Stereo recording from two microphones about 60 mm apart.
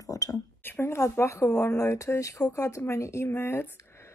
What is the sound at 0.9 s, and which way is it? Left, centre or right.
A woman's voice, left.